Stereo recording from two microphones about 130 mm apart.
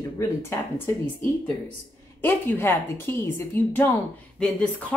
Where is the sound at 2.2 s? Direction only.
15° left (ahead or behind).